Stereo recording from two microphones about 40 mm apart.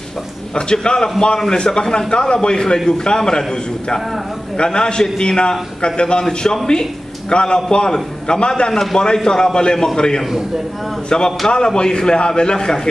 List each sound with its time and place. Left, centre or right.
0.6 s a man's voice: left
4.6 s a man's voice: left